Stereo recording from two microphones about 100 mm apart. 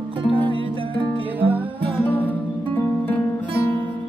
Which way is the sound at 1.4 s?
20° right (ahead or behind).